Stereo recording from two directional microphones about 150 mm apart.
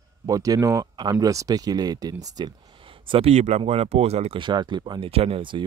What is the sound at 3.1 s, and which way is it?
Speech, 45° right (ahead or behind).